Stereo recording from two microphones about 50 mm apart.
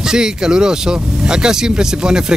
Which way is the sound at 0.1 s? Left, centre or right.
Centre.